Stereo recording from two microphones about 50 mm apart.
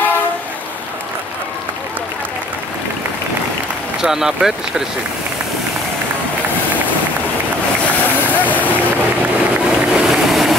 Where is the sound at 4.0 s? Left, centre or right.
Centre.